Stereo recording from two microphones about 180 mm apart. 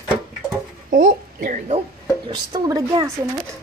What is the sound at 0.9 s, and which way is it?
Speech, 50° right (ahead or behind).